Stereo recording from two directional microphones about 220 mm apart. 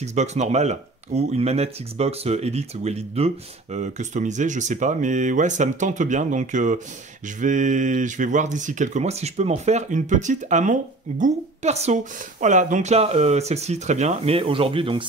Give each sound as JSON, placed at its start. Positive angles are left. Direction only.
{"t": 0.0, "sound": "speech", "side_deg": -30}